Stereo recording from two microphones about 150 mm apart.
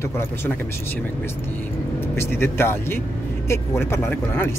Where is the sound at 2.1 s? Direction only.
15° left (ahead or behind).